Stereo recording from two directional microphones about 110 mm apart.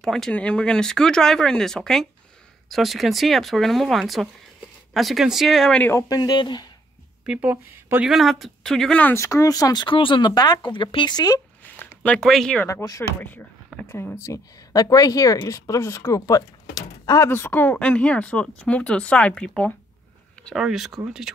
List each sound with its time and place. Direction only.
0.0 s speech: 5° left (ahead or behind)
5.8 s speech: 20° left (ahead or behind)
6.0 s speech: 35° left (ahead or behind)
7.2 s speech: 15° right (ahead or behind)
8.1 s speech: centre (ahead or behind)
9.0 s speech: 25° left (ahead or behind)
9.8 s speech: 50° left (ahead or behind); by 11.4 s 35° left (ahead or behind)
11.6 s a sound: 15° left (ahead or behind)
12.8 s speech: 30° left (ahead or behind)
13.2 s speech: 15° left (ahead or behind); by 17.3 s 35° left (ahead or behind)
17.3 s speech: 20° left (ahead or behind)
20.5 s speech: 5° right (ahead or behind)